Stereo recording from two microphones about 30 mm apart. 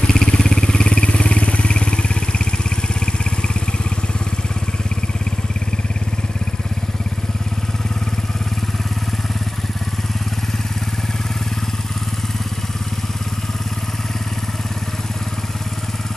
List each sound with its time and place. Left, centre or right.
0.0 s vehicle: left